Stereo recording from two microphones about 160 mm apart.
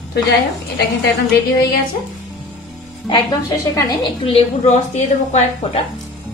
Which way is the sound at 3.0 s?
25° left (ahead or behind).